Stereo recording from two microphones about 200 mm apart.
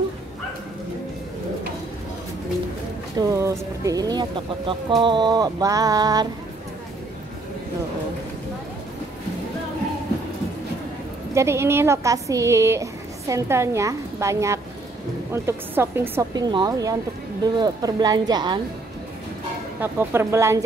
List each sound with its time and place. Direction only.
3.2 s speech: 15° right (ahead or behind)
11.3 s a woman's voice: 15° right (ahead or behind)
19.8 s a woman's voice: 10° right (ahead or behind)